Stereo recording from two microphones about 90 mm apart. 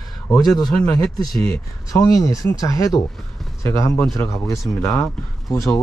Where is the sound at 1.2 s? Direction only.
45° left (ahead or behind).